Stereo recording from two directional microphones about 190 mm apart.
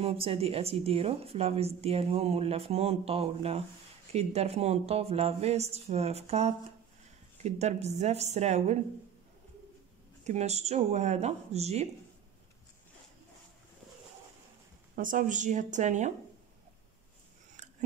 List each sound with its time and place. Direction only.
0.0 s speech: 30° right (ahead or behind)
10.2 s speech: 35° right (ahead or behind)
15.0 s speech: 45° right (ahead or behind)
17.6 s a sound: 40° right (ahead or behind)